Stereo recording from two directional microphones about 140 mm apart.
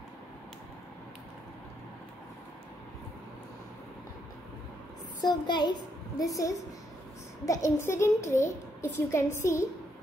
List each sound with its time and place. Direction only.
5.2 s a child's voice: 30° left (ahead or behind)